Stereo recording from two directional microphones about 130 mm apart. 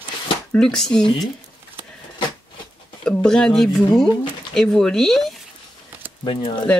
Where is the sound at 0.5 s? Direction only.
5° left (ahead or behind).